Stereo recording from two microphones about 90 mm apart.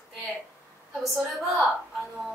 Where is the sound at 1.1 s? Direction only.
Centre (ahead or behind).